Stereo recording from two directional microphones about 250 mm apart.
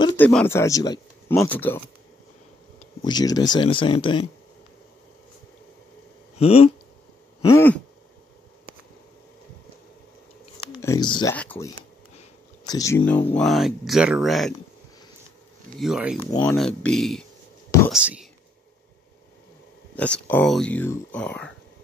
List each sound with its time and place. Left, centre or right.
0.2 s speech: centre
3.0 s speech: centre
6.3 s speech: left
7.4 s speech: centre
10.7 s speech: centre
12.6 s speech: centre
15.8 s speech: centre
16.3 s speech: centre
16.5 s speech: centre
20.0 s speech: centre